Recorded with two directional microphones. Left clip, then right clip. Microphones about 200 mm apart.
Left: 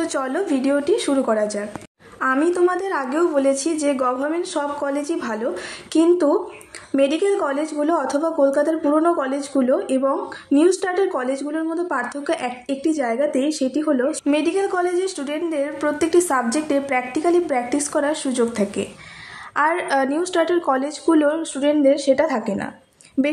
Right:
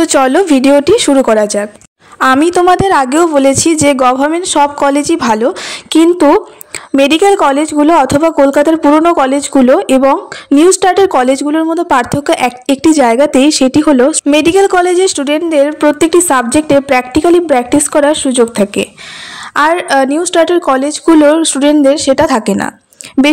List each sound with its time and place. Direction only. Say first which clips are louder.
0.0 s a woman's voice: right 14 dB; 45° right (ahead or behind)
7.0 s a woman's voice: right 11 dB; 50° right (ahead or behind)